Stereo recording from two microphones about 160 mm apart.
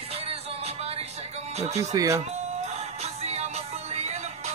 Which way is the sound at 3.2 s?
45° right (ahead or behind).